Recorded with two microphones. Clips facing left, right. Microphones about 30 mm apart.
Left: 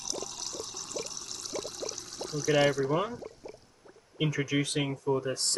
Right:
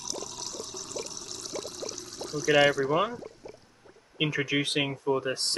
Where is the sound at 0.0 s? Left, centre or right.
Centre.